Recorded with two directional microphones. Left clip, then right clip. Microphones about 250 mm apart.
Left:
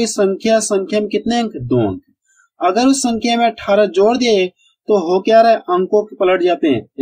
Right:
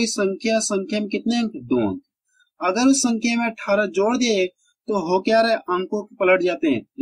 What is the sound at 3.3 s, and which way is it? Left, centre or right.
Speech, centre.